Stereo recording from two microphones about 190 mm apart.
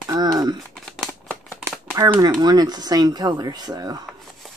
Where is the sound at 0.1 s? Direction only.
20° right (ahead or behind).